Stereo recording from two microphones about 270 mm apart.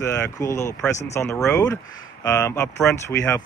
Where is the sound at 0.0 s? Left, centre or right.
Centre.